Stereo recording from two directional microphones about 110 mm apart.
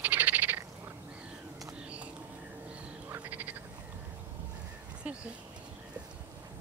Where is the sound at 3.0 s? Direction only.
15° right (ahead or behind).